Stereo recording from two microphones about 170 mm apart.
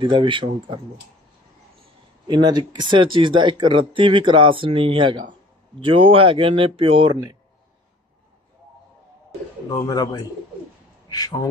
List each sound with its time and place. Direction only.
0.0 s speech: 25° right (ahead or behind)
2.2 s speech: 25° right (ahead or behind)
9.7 s speech: 20° left (ahead or behind)
11.1 s a man's voice: 20° left (ahead or behind)